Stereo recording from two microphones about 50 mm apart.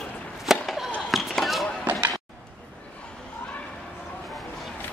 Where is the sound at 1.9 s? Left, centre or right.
Right.